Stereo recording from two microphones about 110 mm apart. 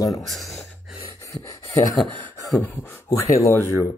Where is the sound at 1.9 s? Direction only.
Centre (ahead or behind).